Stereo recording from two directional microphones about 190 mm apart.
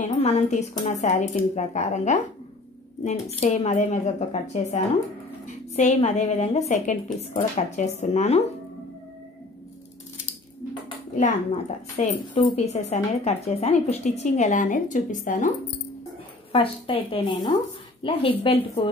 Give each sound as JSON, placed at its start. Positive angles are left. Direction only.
{"t": 0.2, "sound": "a woman's voice", "side_deg": 35}
{"t": 11.1, "sound": "a woman's voice", "side_deg": 40}
{"t": 16.5, "sound": "a woman's voice", "side_deg": 30}